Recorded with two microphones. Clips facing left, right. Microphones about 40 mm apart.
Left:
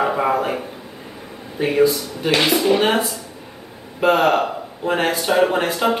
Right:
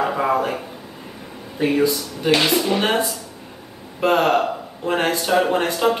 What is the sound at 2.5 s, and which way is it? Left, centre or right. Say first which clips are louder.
Speech: left 3 dB; left.